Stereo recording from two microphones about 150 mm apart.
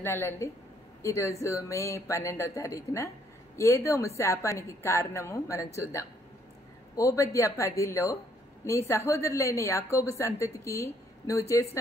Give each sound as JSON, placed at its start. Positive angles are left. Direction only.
{"t": 0.0, "sound": "a woman's voice", "side_deg": 15}